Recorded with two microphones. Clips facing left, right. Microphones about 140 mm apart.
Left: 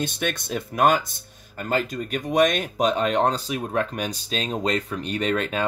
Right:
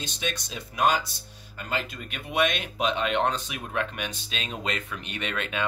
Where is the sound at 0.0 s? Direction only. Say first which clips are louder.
Left 6 dB; 55° left (ahead or behind).